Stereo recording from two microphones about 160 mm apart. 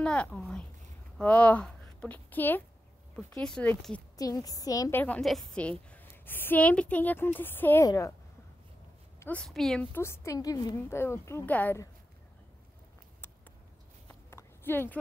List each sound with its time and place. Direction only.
0.0 s a woman's voice: 5° left (ahead or behind)
4.2 s a woman's voice: 20° left (ahead or behind)
5.0 s a woman's voice: 5° left (ahead or behind); by 8.1 s 20° left (ahead or behind)
9.2 s speech: 5° left (ahead or behind)
9.9 s a woman's voice: 15° left (ahead or behind)
14.0 s a sound: 15° left (ahead or behind)